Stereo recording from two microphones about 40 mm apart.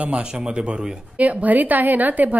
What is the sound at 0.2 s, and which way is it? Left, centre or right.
Speech, right.